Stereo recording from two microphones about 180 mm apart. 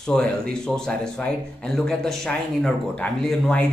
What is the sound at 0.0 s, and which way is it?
Speech, 5° left (ahead or behind).